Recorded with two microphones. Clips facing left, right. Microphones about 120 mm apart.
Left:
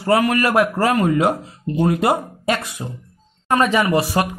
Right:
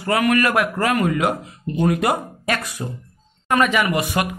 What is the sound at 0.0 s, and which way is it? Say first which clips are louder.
Speech: left 1 dB; 30° left (ahead or behind).